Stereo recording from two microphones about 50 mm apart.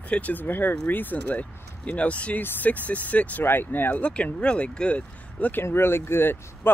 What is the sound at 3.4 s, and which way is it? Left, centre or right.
Speech, left.